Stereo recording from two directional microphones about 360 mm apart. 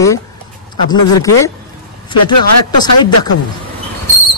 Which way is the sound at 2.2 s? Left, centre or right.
Left.